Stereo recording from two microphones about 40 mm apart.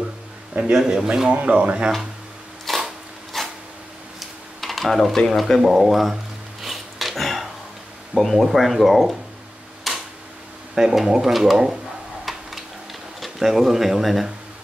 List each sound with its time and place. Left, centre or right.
0.7 s speech: centre
1.3 s speech: right
2.7 s a sound: centre
4.6 s speech: centre
6.6 s a sound: centre
8.1 s speech: centre
9.9 s camera: centre
10.7 s speech: centre
12.3 s a sound: centre
13.2 s speech: centre